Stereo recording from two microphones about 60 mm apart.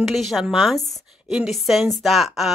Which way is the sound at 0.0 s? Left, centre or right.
Centre.